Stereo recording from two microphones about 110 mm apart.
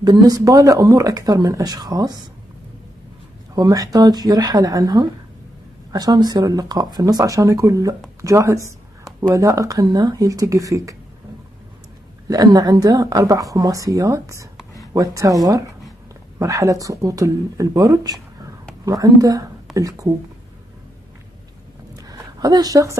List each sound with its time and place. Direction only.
0.0 s speech: 35° right (ahead or behind)
3.5 s speech: 35° right (ahead or behind)
12.3 s speech: 35° right (ahead or behind)
21.9 s a sound: 35° right (ahead or behind)